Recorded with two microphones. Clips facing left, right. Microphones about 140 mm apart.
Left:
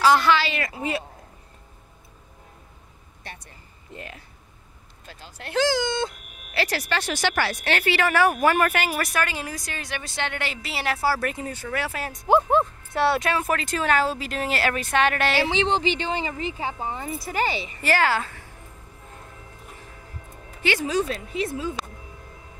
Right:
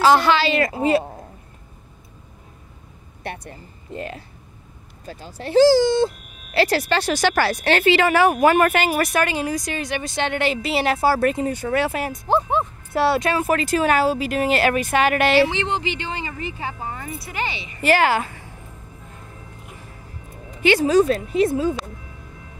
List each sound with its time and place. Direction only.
0.2 s speech: 30° right (ahead or behind)
3.3 s a sound: 60° right (ahead or behind)
3.9 s speech: 35° right (ahead or behind)
6.5 s speech: 30° right (ahead or behind)
7.8 s speech: 20° right (ahead or behind)
12.3 s speech: 5° left (ahead or behind); by 15.3 s 10° right (ahead or behind)
15.4 s speech: 30° left (ahead or behind)
17.2 s speech: 40° left (ahead or behind)
17.8 s speech: 15° right (ahead or behind)
20.7 s a woman's voice: 40° right (ahead or behind)